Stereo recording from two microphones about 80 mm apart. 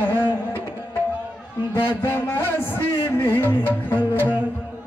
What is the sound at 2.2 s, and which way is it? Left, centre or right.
Music, left.